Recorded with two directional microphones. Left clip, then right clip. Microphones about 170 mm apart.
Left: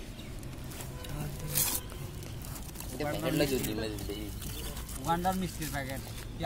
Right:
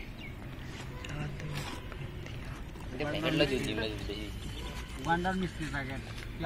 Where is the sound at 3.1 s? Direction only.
40° left (ahead or behind).